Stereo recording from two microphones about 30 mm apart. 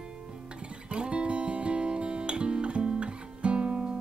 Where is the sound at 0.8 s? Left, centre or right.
Right.